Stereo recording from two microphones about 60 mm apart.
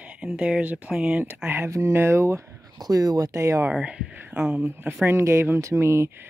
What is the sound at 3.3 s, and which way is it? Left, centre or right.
Speech, right.